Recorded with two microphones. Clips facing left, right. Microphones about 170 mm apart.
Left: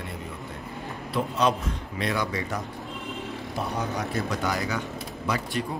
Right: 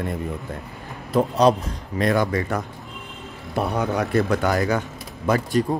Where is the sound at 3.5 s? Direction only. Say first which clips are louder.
Right 8 dB; 65° right (ahead or behind); by 5.8 s 45° right (ahead or behind).